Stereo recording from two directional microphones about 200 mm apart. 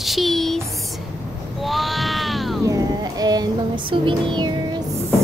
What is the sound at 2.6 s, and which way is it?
Music, 15° right (ahead or behind).